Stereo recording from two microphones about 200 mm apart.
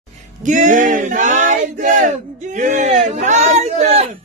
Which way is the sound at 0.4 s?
40° right (ahead or behind).